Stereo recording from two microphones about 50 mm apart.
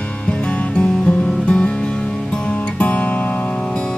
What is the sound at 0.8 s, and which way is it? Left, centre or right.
Music, left.